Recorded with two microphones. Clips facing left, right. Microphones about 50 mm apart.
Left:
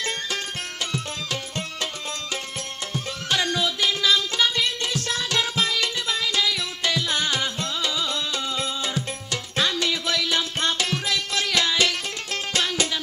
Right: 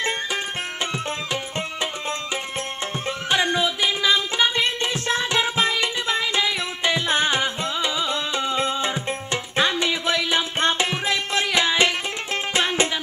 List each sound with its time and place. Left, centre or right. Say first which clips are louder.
0.9 s music: right 3 dB; right